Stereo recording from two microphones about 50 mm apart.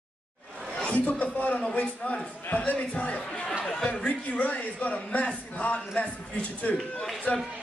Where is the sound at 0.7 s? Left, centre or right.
Left.